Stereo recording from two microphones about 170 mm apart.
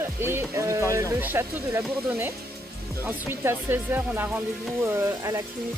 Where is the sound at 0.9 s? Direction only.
15° right (ahead or behind).